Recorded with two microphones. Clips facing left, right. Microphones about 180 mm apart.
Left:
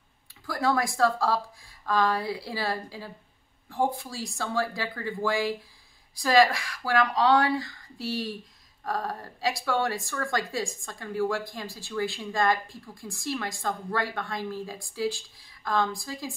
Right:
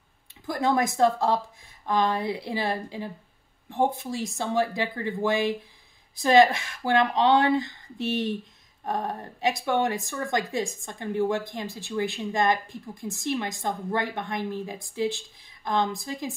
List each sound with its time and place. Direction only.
0.5 s a woman's voice: 20° right (ahead or behind)